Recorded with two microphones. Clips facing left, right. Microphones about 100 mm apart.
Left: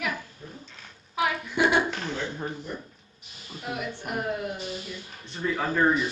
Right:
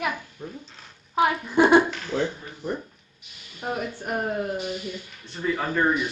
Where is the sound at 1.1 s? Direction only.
35° right (ahead or behind).